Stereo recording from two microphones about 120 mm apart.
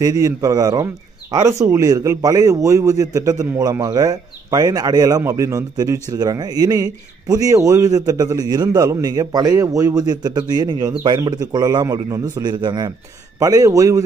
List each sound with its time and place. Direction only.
0.0 s a man's voice: 30° right (ahead or behind)